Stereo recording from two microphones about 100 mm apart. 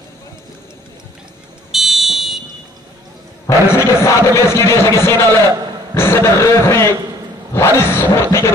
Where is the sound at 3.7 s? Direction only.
25° left (ahead or behind).